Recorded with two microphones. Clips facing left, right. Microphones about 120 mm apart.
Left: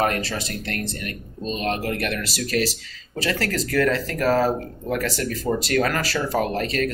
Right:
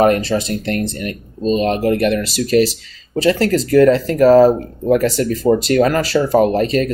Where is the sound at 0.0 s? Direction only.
25° right (ahead or behind).